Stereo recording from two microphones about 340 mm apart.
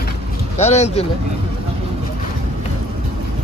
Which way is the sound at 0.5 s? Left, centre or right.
Centre.